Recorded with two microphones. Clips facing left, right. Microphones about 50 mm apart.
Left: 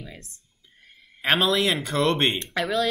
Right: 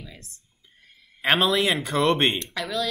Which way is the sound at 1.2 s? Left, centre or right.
Centre.